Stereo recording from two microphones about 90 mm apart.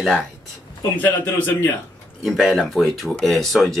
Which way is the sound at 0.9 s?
20° left (ahead or behind).